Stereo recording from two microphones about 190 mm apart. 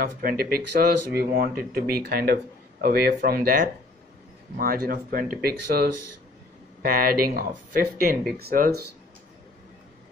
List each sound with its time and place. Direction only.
0.0 s speech: 50° right (ahead or behind)